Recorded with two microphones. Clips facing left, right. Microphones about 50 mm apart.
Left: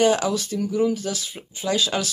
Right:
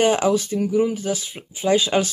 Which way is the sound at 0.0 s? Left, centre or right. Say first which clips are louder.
Right 2 dB; right.